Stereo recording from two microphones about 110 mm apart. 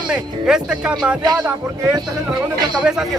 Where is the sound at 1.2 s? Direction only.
35° right (ahead or behind).